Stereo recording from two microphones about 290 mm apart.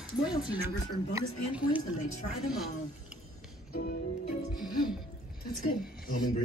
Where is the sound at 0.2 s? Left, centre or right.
Centre.